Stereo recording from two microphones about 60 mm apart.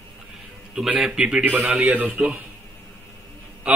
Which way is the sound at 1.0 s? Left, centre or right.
Centre.